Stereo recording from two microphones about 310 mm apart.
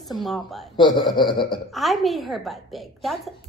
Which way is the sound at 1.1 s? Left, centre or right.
Centre.